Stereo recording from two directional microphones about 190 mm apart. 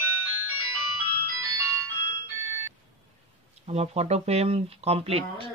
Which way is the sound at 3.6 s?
35° right (ahead or behind).